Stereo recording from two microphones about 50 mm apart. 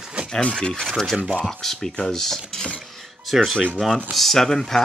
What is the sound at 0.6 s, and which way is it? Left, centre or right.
Speech, centre.